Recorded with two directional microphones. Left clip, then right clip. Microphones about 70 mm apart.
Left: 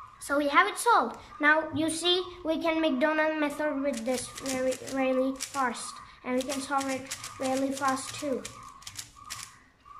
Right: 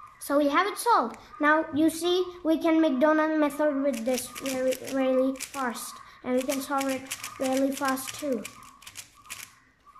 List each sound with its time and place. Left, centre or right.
0.3 s a woman's voice: right